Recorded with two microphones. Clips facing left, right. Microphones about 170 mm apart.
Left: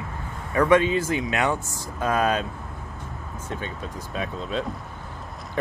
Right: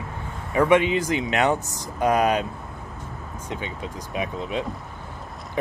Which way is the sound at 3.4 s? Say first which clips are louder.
Right 1 dB; 15° right (ahead or behind).